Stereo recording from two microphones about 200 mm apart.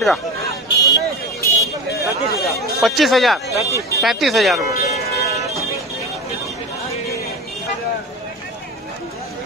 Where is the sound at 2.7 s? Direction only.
Centre (ahead or behind).